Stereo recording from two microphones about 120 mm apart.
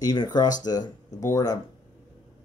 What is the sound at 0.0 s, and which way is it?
A man's voice, 35° left (ahead or behind).